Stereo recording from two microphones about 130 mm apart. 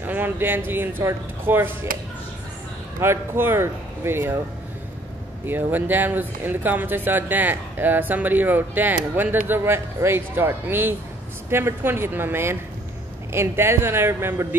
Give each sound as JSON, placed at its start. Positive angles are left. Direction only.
{"t": 0.0, "sound": "speech", "side_deg": -15}
{"t": 3.0, "sound": "speech", "side_deg": -20}
{"t": 5.5, "sound": "speech", "side_deg": -15}